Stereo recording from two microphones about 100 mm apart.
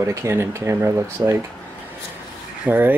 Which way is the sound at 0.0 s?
30° right (ahead or behind).